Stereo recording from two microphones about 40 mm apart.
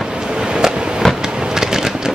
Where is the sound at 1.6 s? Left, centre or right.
Centre.